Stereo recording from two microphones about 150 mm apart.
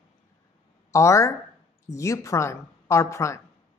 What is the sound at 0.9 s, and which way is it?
A woman's voice, 20° left (ahead or behind).